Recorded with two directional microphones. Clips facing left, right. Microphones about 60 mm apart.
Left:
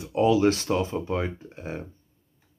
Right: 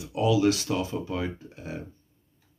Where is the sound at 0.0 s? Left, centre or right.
Left.